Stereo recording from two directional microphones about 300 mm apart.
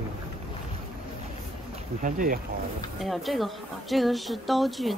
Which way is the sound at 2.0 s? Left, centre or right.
Right.